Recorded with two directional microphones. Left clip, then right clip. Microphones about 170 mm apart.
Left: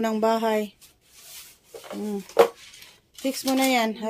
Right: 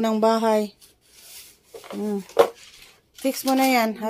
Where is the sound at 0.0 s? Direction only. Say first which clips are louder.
Right 3 dB; 25° right (ahead or behind).